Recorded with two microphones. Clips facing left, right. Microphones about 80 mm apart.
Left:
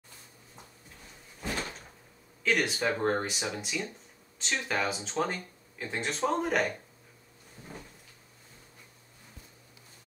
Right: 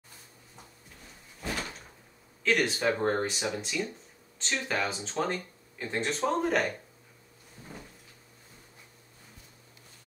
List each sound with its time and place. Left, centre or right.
2.4 s speech: centre